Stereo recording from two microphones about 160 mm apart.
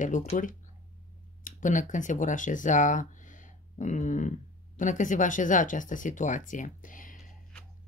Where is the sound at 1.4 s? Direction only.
55° left (ahead or behind).